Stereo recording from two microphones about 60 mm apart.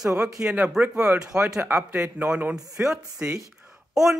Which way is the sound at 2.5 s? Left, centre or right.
Centre.